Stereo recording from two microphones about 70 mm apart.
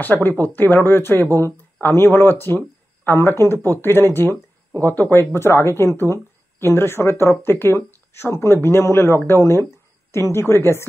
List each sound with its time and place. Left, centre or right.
0.0 s speech: left